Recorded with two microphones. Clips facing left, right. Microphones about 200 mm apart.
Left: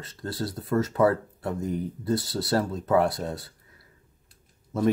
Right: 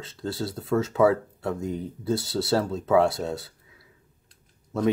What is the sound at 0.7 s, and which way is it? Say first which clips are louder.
Speech: right 2 dB; centre (ahead or behind).